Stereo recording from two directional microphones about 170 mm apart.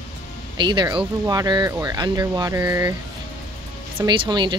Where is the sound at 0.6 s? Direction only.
25° right (ahead or behind).